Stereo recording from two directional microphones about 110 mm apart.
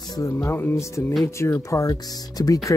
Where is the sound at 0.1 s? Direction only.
25° left (ahead or behind).